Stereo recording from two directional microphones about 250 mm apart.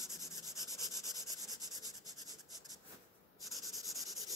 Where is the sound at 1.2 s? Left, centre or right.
Centre.